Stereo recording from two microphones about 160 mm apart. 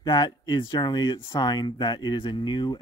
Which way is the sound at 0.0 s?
25° left (ahead or behind).